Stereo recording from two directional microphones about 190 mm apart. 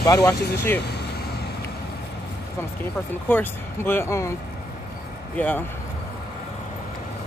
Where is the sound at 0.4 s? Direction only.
55° left (ahead or behind).